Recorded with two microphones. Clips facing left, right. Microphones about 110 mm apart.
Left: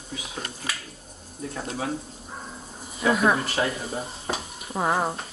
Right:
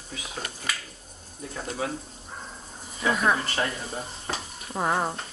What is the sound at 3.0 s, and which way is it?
Speech, 5° left (ahead or behind).